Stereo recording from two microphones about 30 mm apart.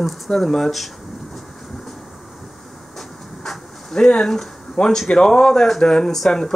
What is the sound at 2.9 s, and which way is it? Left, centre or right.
Vehicle, centre.